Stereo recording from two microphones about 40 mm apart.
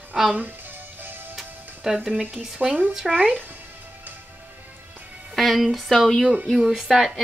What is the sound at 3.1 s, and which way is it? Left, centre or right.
Speech, right.